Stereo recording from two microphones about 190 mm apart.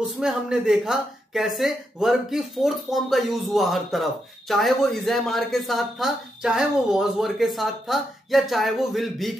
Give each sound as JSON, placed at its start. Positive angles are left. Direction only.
{"t": 0.2, "sound": "speech", "side_deg": -5}